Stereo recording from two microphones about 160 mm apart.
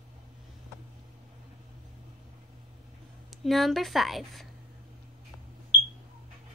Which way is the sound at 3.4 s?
Centre (ahead or behind).